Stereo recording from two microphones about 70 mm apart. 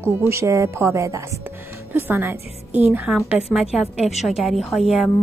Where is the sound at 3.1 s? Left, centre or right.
Centre.